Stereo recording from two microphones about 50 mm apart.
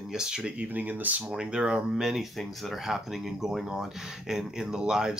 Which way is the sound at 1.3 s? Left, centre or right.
Centre.